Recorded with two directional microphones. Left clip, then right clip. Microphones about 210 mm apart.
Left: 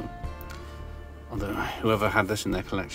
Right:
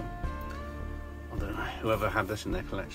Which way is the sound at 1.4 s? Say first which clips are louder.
Left 6 dB; 50° left (ahead or behind).